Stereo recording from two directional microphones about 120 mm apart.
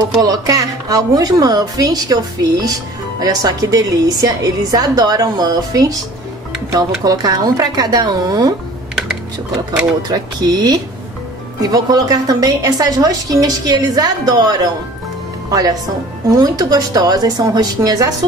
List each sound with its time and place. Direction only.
0.1 s a woman's voice: 30° right (ahead or behind)
10.0 s a woman's voice: 35° right (ahead or behind)
16.3 s a woman's voice: 30° right (ahead or behind)